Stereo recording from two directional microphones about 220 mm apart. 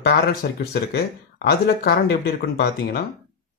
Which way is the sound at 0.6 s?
45° left (ahead or behind).